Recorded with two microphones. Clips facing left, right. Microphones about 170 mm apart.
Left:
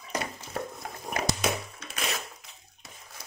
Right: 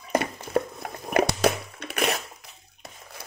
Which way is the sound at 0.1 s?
60° right (ahead or behind).